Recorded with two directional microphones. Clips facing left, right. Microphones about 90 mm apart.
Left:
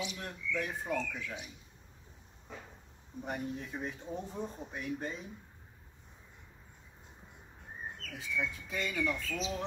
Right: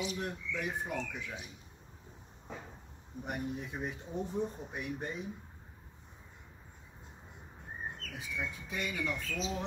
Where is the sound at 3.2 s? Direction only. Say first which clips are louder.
Even; 15° right (ahead or behind).